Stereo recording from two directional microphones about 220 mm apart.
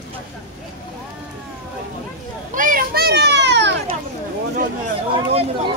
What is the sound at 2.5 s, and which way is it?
Children playing, 40° right (ahead or behind).